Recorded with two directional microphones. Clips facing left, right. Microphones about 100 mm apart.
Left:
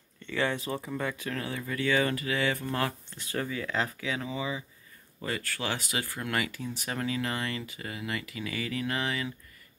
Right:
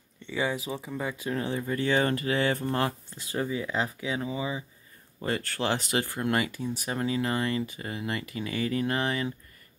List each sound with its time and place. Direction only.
0.2 s a sound: 15° right (ahead or behind)
0.7 s speech: 5° right (ahead or behind)
1.0 s speech: 20° right (ahead or behind)
3.3 s speech: 20° right (ahead or behind)